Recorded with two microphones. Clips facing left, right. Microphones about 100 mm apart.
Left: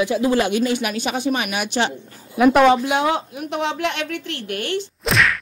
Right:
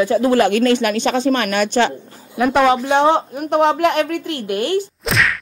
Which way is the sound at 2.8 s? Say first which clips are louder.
Right 5 dB; 30° right (ahead or behind).